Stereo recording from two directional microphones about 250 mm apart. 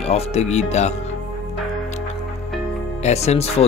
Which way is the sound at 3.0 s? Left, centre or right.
Left.